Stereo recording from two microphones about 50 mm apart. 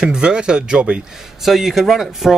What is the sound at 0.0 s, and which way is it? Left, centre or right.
Speech, centre.